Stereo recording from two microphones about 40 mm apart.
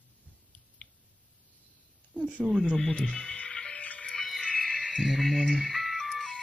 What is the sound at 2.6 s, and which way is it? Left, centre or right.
Speech, centre.